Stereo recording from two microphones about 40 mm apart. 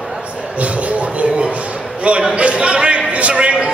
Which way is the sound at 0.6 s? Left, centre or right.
Right.